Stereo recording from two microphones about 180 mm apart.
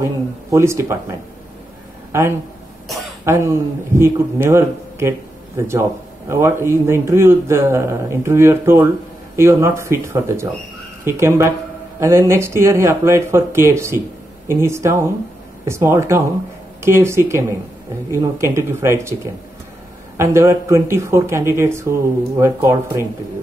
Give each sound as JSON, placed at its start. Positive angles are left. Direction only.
{"t": 0.0, "sound": "speech", "side_deg": -15}
{"t": 3.3, "sound": "speech", "side_deg": -15}
{"t": 20.2, "sound": "speech", "side_deg": -15}